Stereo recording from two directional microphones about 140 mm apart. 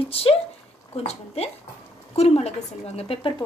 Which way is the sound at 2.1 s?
50° left (ahead or behind).